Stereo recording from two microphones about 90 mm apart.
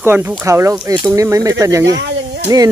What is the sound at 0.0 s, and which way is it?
Speech, 25° right (ahead or behind).